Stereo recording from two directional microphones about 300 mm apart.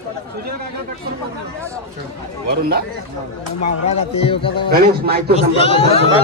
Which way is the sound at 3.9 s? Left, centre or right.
Centre.